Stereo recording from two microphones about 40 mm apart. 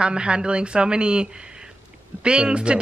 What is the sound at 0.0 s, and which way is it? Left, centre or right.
Speech, right.